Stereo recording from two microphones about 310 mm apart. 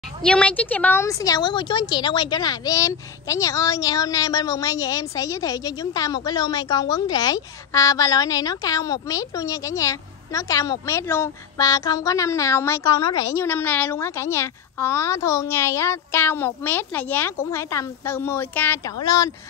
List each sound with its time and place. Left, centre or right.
0.2 s a woman's voice: centre